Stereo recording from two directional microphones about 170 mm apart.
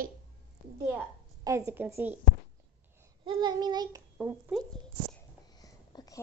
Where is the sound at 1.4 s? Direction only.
15° right (ahead or behind).